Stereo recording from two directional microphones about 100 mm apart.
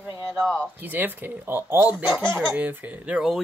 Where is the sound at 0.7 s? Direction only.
20° right (ahead or behind).